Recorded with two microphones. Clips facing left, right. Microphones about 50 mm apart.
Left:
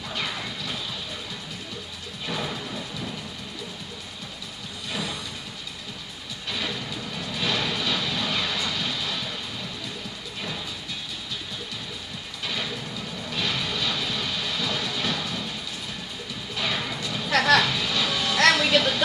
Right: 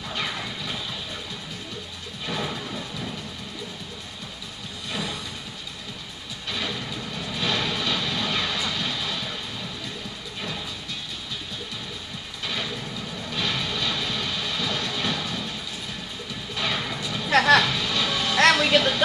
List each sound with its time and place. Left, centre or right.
0.1 s music: centre
2.2 s music: centre
6.5 s vehicle: centre
13.3 s music: centre
16.5 s music: centre
17.3 s a sound: centre
17.6 s music: centre